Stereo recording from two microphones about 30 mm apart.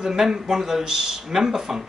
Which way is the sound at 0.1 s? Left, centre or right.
Centre.